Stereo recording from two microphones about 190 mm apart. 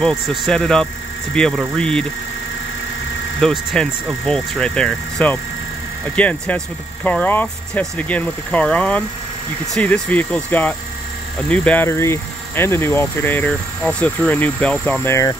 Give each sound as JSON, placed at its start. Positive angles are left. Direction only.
{"t": 0.0, "sound": "speech", "side_deg": 0}
{"t": 3.3, "sound": "speech", "side_deg": 5}